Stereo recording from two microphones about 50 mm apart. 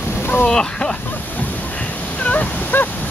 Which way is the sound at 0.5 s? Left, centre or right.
Centre.